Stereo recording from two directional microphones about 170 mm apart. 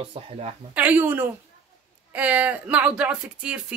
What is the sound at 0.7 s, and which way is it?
Speech, 10° right (ahead or behind).